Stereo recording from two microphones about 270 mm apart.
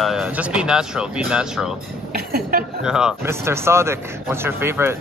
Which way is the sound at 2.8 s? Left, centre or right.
Centre.